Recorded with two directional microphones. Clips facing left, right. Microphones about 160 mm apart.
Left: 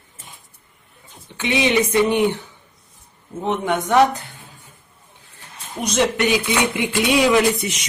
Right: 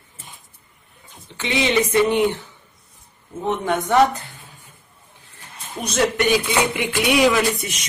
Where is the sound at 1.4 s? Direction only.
15° left (ahead or behind).